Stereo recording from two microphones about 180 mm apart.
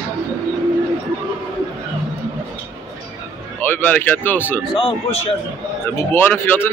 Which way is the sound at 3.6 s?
10° left (ahead or behind).